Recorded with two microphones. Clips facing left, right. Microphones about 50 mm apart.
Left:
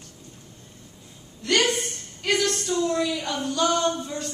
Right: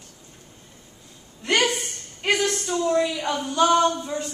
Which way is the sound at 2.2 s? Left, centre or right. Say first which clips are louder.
Right 1 dB; right.